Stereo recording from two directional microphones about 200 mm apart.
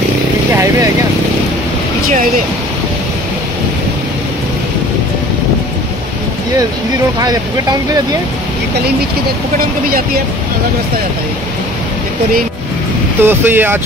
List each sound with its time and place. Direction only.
9.6 s speech: 45° right (ahead or behind)
13.2 s speech: 10° right (ahead or behind)